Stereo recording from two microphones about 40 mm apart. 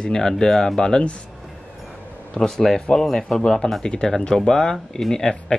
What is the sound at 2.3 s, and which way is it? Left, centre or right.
Speech, centre.